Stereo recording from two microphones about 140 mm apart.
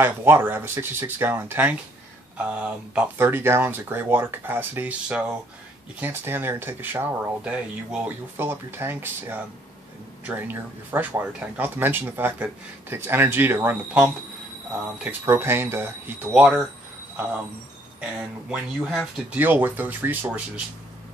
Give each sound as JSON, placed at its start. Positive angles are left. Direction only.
{"t": 0.0, "sound": "speech", "side_deg": -15}
{"t": 16.3, "sound": "speech", "side_deg": -5}
{"t": 18.5, "sound": "speech", "side_deg": 0}
{"t": 19.3, "sound": "speech", "side_deg": -15}